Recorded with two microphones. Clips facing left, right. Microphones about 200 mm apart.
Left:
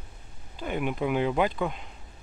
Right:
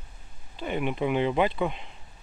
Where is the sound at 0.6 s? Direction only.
5° left (ahead or behind).